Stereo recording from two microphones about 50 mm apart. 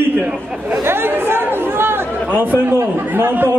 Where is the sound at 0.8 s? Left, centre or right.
Right.